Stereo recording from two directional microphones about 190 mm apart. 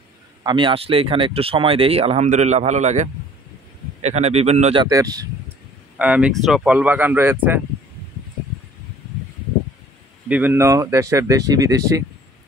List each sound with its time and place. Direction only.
0.4 s speech: 25° right (ahead or behind)
4.8 s speech: 20° right (ahead or behind)
5.9 s speech: 5° right (ahead or behind)
10.2 s speech: 10° right (ahead or behind)